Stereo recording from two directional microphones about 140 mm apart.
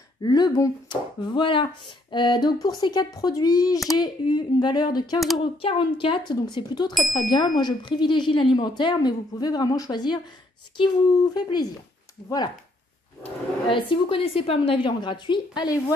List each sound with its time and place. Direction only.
0.2 s speech: 30° left (ahead or behind)
13.2 s speech: 40° left (ahead or behind)